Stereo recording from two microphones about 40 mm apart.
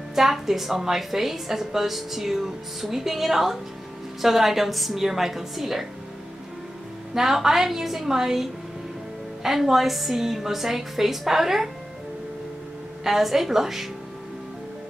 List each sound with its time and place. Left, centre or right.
0.1 s a woman's voice: centre
7.2 s a woman's voice: centre
13.0 s a woman's voice: centre